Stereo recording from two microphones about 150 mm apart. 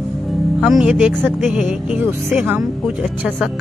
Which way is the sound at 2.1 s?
15° right (ahead or behind).